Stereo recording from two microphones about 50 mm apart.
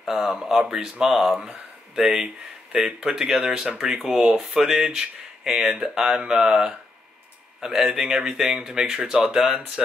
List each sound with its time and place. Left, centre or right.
0.0 s speech: centre
1.1 s speech: centre